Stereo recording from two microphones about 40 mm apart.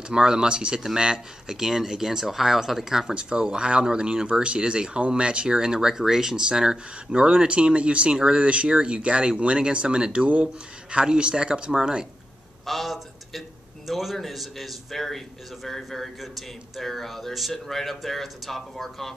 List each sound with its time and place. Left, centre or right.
0.1 s speech: centre
12.6 s a man's voice: centre